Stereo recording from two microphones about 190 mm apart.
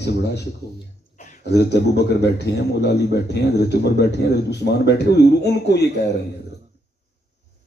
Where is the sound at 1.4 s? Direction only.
60° left (ahead or behind).